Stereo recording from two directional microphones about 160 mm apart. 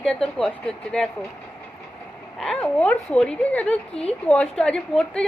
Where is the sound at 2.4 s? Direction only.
5° left (ahead or behind).